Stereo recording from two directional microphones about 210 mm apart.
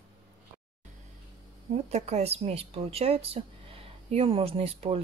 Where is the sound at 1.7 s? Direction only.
30° right (ahead or behind).